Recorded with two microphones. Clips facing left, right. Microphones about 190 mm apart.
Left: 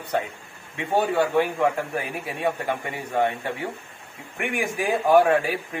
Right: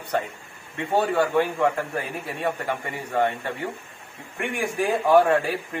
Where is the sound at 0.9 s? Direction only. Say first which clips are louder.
Even; 10° left (ahead or behind).